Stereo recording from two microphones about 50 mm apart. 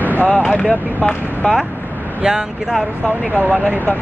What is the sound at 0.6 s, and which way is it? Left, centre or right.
Speech, centre.